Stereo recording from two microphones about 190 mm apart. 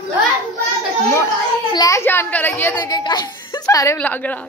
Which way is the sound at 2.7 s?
20° left (ahead or behind).